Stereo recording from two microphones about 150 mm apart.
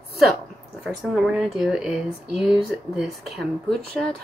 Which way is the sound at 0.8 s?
5° right (ahead or behind).